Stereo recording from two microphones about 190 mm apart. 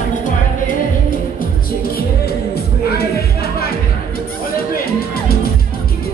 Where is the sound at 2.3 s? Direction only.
55° left (ahead or behind).